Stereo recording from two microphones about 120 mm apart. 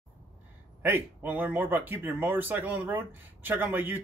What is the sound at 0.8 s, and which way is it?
Speech, 15° right (ahead or behind).